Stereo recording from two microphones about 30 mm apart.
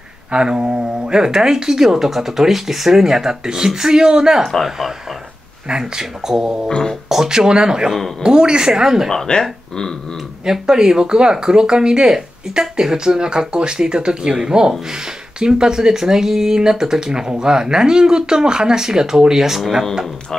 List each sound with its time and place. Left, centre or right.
0.3 s a sound: right
0.6 s speech: right
1.0 s speech: right
4.4 s speech: centre
4.6 s speech: centre
5.7 s speech: right
6.2 s speech: centre
6.7 s speech: left
7.2 s speech: right
9.1 s speech: centre
10.4 s speech: right